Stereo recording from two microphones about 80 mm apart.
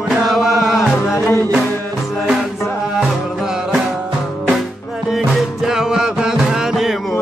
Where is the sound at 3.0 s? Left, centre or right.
Centre.